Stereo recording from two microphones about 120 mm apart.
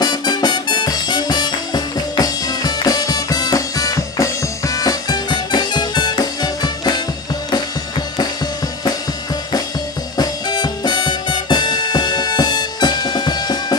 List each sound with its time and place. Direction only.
0.0 s music: 35° left (ahead or behind)
10.1 s music: 35° left (ahead or behind)